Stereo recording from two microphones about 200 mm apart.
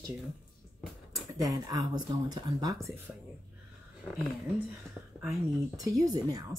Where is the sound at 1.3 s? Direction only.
15° right (ahead or behind).